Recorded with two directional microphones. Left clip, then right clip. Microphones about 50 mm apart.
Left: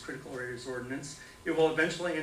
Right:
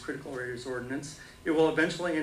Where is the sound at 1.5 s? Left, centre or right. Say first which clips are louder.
Right 2 dB; right.